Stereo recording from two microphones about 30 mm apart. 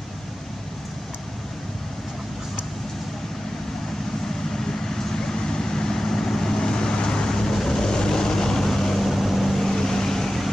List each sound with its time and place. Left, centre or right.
4.9 s vehicle: centre
9.0 s vehicle: centre